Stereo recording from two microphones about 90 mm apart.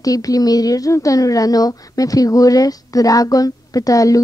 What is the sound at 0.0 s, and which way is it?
Speech, 40° left (ahead or behind).